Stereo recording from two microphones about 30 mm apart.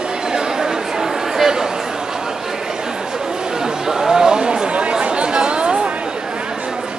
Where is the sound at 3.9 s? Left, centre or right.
Centre; by 4.9 s right.